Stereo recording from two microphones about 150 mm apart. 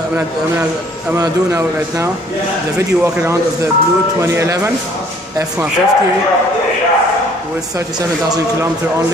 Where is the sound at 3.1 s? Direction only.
20° right (ahead or behind).